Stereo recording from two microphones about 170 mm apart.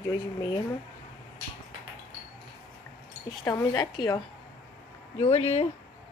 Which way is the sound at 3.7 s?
25° left (ahead or behind).